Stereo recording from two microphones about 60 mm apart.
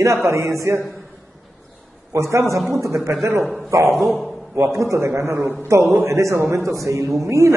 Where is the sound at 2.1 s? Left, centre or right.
Right.